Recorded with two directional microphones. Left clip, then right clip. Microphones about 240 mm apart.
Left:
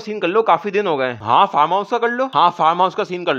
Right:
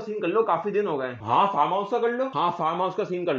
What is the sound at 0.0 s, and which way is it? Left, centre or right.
Speech, left.